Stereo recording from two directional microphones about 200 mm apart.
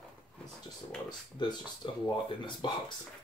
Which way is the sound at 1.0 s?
20° left (ahead or behind).